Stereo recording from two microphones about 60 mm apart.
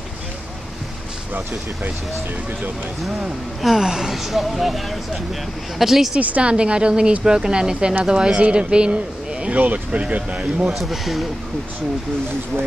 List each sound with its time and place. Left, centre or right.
3.6 s speech: centre
6.1 s speech: right
10.7 s speech: centre